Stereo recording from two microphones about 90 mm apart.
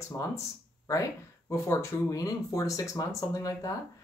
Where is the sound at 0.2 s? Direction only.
40° left (ahead or behind).